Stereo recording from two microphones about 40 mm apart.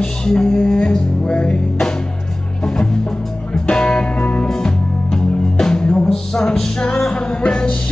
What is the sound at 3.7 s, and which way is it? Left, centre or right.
Music, left.